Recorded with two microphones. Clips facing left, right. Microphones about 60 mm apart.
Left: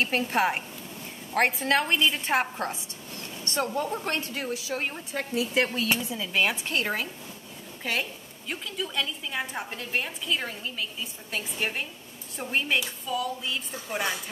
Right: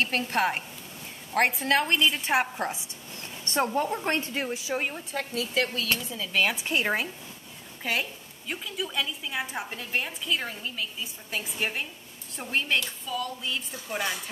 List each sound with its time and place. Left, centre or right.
0.0 s a woman's voice: centre
3.5 s a woman's voice: right
4.8 s a woman's voice: centre
5.3 s speech: centre
6.5 s speech: centre
7.8 s a woman's voice: centre